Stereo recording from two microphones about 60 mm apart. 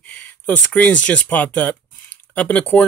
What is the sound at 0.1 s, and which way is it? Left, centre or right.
Speech, left.